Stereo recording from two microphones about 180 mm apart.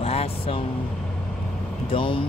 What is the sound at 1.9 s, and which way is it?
Speech, 30° left (ahead or behind).